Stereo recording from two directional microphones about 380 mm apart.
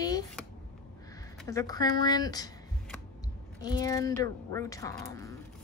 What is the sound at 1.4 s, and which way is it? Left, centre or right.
Speech, centre.